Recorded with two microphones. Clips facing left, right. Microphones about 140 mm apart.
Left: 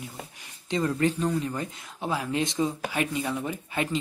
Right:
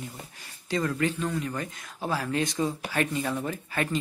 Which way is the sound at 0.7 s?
25° left (ahead or behind).